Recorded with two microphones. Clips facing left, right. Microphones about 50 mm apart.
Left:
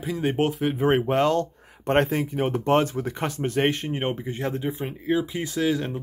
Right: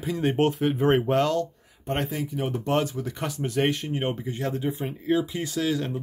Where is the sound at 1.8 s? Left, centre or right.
Left.